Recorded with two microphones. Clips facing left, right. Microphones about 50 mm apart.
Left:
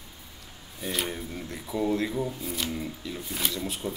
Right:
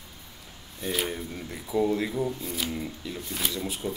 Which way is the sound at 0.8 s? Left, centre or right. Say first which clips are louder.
Right 2 dB; centre.